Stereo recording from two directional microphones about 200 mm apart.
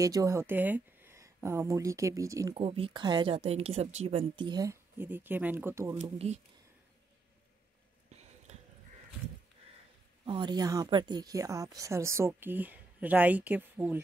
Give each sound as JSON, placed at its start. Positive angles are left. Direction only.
{"t": 0.0, "sound": "speech", "side_deg": -15}
{"t": 2.5, "sound": "speech", "side_deg": -25}
{"t": 6.0, "sound": "speech", "side_deg": -30}
{"t": 10.2, "sound": "a woman's voice", "side_deg": -25}